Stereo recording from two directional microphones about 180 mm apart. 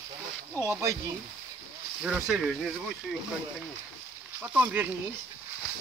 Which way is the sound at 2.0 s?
5° right (ahead or behind).